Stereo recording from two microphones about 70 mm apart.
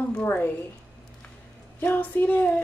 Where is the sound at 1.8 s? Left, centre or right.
Left.